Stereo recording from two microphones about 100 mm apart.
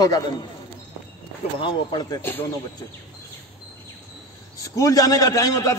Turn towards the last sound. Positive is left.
turn(degrees=35)  # may be behind; listen again after turning